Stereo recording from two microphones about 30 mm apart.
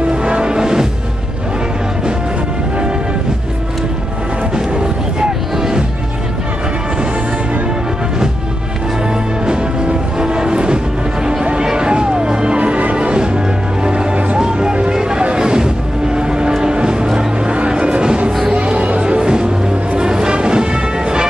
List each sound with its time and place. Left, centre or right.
0.1 s music: right
4.6 s music: right
9.5 s music: right
11.5 s a sound: right
11.9 s music: right
12.5 s music: right
14.4 s music: right
16.2 s a sound: right
17.6 s music: right